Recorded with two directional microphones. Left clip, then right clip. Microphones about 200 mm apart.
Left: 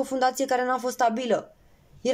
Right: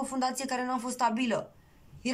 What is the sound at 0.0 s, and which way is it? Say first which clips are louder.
Speech: left 8 dB; 30° left (ahead or behind).